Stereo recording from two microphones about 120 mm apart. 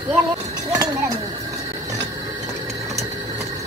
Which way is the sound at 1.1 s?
60° right (ahead or behind).